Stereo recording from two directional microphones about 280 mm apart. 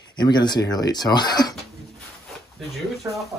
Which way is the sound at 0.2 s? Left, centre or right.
Centre.